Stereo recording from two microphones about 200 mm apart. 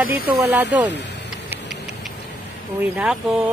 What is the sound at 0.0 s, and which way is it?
Speech, 15° right (ahead or behind).